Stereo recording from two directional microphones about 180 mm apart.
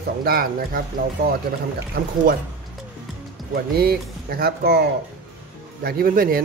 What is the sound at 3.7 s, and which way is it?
Speech, 55° right (ahead or behind).